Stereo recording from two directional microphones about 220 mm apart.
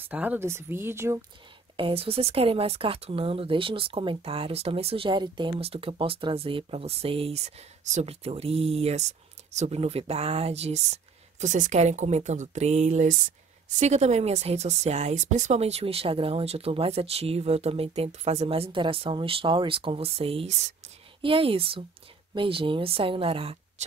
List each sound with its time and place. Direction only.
0.0 s speech: 5° right (ahead or behind)
1.8 s speech: 25° right (ahead or behind)